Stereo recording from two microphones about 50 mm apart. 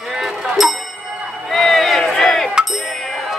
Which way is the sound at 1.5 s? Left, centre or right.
Centre.